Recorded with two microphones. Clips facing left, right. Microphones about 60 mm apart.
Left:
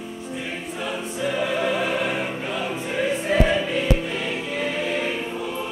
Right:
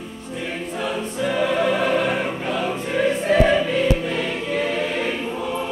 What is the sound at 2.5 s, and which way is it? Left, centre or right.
Choir, centre.